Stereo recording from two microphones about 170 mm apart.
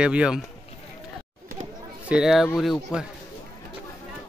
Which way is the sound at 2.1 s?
Centre (ahead or behind).